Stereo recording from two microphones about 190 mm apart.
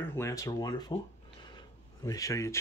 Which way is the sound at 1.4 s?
20° left (ahead or behind).